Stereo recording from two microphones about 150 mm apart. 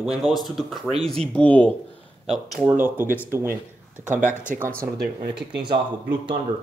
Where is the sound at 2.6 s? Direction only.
10° right (ahead or behind).